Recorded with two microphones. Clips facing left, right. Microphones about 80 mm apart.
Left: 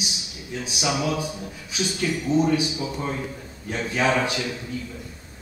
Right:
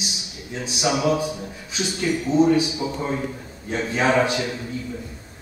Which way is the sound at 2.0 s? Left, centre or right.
Right.